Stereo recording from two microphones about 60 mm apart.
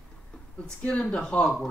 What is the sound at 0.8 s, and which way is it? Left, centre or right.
Speech, centre.